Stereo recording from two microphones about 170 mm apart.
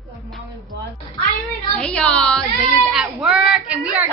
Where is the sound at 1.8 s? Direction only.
5° left (ahead or behind).